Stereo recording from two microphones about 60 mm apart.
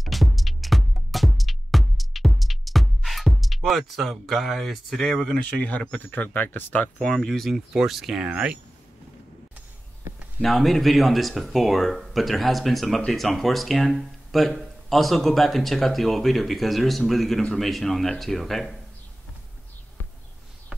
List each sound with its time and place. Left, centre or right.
0.0 s music: centre
5.4 s speech: left
7.0 s speech: centre
8.3 s a sound: centre
10.4 s speech: centre